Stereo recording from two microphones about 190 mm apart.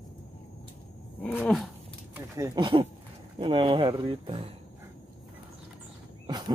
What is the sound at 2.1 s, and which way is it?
Speech, 15° right (ahead or behind).